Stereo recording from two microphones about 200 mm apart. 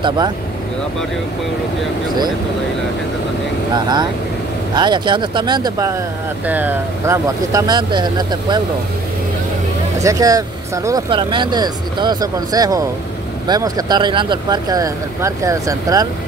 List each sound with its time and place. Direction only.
3.7 s speech: 20° right (ahead or behind)
9.9 s speech: 15° right (ahead or behind)